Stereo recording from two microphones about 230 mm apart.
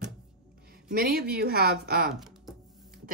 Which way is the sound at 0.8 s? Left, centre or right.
Right.